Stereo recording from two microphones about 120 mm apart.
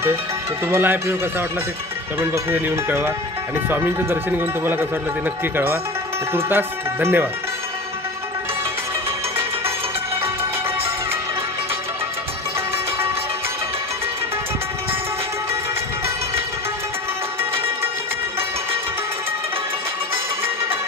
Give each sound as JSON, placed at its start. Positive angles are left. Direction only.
{"t": 0.7, "sound": "speech", "side_deg": -20}
{"t": 2.1, "sound": "a man's voice", "side_deg": -20}
{"t": 17.4, "sound": "music", "side_deg": -20}